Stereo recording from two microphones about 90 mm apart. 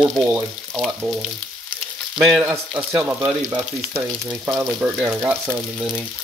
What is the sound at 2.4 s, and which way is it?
Speech, 15° right (ahead or behind).